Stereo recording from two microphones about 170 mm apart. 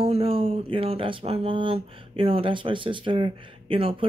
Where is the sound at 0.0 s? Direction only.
35° right (ahead or behind).